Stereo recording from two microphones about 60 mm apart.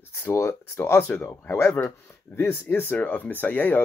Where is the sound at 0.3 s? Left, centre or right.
Left.